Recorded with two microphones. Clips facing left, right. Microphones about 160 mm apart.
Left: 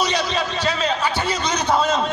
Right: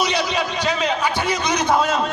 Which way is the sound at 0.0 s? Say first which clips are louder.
Right 1 dB; 10° right (ahead or behind).